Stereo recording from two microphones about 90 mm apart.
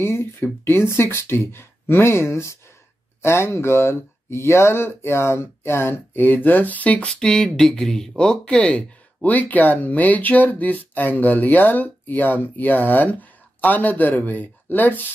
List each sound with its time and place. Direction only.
0.0 s speech: 25° left (ahead or behind)